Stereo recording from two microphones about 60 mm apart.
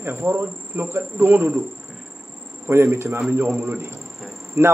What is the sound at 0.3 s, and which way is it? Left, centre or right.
A man's voice, right.